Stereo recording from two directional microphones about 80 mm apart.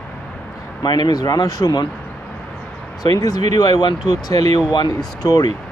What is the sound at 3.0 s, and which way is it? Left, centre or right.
Speech, left.